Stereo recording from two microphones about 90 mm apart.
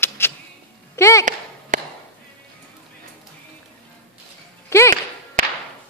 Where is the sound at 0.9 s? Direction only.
30° left (ahead or behind).